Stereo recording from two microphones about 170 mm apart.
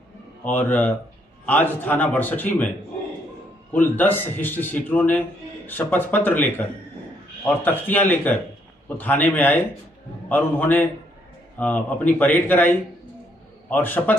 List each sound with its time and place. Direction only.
0.4 s a man's voice: 10° left (ahead or behind)
3.7 s a man's voice: 10° left (ahead or behind)